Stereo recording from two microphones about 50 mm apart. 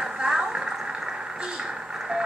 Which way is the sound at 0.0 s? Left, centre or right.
Centre.